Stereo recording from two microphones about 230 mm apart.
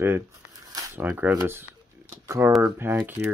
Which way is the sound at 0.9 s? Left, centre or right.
Centre.